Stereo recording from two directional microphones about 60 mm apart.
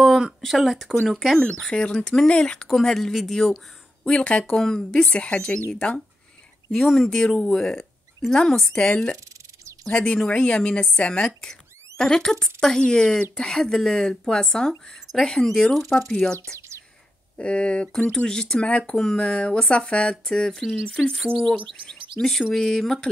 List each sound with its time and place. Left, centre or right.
0.0 s speech: centre
4.0 s speech: centre
7.1 s speech: centre
8.7 s speech: centre
16.5 s a sound: right
17.4 s speech: centre